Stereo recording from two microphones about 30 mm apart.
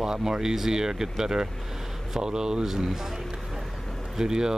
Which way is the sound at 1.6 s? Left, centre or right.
Centre.